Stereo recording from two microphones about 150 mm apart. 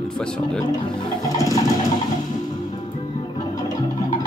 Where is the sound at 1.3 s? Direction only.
20° left (ahead or behind).